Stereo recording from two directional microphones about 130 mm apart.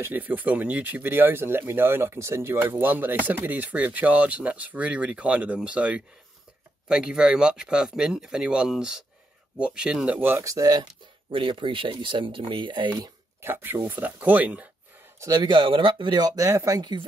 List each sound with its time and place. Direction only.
0.0 s speech: 15° right (ahead or behind); by 10.9 s 30° right (ahead or behind)
11.3 s speech: 40° right (ahead or behind)
13.4 s speech: 15° right (ahead or behind)
15.1 s speech: 30° right (ahead or behind)